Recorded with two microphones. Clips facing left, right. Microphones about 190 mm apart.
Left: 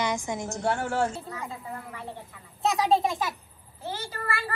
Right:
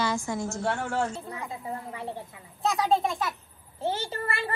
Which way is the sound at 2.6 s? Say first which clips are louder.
Left 1 dB; 20° left (ahead or behind).